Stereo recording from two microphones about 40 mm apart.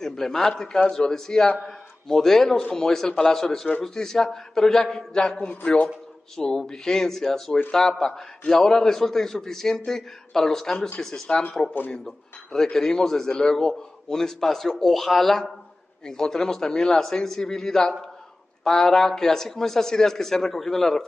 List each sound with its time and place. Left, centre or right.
0.0 s a man's voice: centre
5.4 s a man's voice: left
6.3 s a man's voice: centre